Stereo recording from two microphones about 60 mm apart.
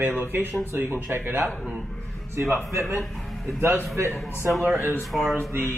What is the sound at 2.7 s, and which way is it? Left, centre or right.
Speech, right.